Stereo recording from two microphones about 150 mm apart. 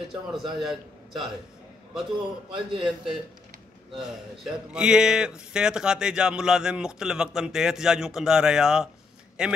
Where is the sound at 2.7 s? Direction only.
35° right (ahead or behind).